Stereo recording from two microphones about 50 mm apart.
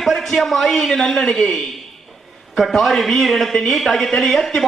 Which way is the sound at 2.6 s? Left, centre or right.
Centre.